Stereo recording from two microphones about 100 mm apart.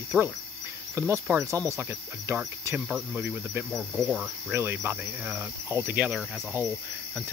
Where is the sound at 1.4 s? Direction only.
30° right (ahead or behind).